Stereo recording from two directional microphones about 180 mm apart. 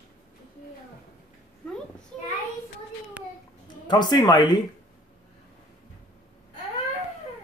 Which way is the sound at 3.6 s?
25° left (ahead or behind).